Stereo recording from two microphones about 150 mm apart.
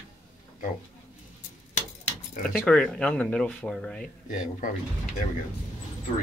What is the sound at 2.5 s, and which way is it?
Speech, 5° left (ahead or behind).